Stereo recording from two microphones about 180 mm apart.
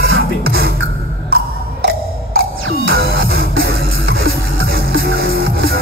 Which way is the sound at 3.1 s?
75° right (ahead or behind).